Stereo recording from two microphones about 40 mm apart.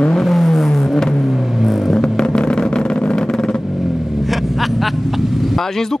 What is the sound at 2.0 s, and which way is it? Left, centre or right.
Vehicle, left.